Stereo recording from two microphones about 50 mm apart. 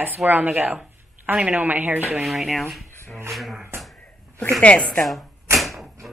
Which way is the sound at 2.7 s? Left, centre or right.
Centre.